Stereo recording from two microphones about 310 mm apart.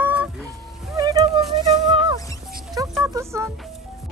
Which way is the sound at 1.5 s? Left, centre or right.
Centre.